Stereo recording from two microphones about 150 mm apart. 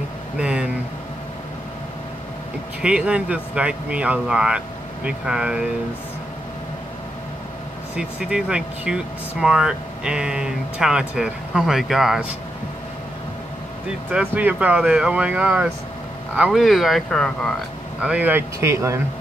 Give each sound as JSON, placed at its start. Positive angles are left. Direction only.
{"t": 0.4, "sound": "vehicle", "side_deg": -5}
{"t": 2.8, "sound": "speech", "side_deg": -5}
{"t": 7.9, "sound": "speech", "side_deg": -5}
{"t": 14.3, "sound": "speech", "side_deg": -10}
{"t": 18.0, "sound": "speech", "side_deg": -10}